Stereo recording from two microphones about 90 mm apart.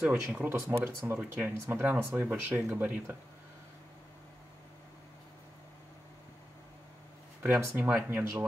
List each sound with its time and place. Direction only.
0.0 s speech: 15° right (ahead or behind)
0.7 s speech: 25° right (ahead or behind)
7.6 s speech: 20° right (ahead or behind)